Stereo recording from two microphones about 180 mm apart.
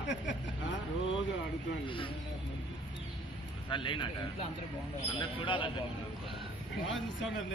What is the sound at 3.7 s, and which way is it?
Speech, 25° left (ahead or behind).